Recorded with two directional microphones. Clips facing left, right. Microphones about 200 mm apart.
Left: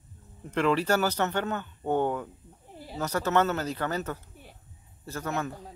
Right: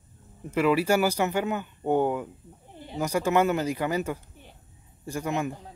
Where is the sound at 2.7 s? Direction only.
5° left (ahead or behind).